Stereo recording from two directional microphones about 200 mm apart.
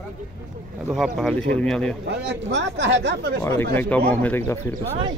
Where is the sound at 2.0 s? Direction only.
65° right (ahead or behind).